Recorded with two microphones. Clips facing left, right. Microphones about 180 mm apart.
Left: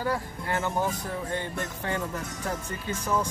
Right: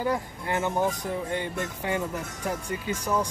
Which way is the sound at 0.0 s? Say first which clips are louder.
Right 2 dB; 20° right (ahead or behind).